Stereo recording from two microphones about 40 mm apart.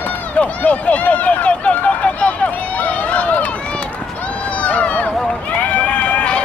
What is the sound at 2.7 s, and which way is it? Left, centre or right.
Run, left.